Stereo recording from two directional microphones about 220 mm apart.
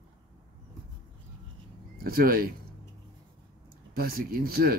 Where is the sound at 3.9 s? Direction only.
45° right (ahead or behind).